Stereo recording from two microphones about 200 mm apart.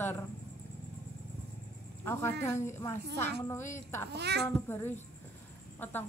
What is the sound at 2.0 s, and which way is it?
Speech, 10° left (ahead or behind).